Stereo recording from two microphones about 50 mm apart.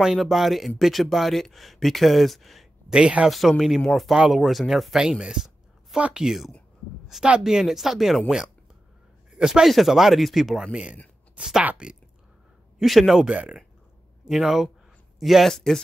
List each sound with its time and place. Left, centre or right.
0.0 s speech: centre
2.9 s speech: centre
3.3 s speech: centre
5.2 s a sound: centre
6.1 s speech: centre
9.3 s speech: centre
9.7 s speech: centre
10.7 s speech: right
12.8 s speech: centre
13.2 s speech: centre
14.2 s speech: centre
15.5 s speech: centre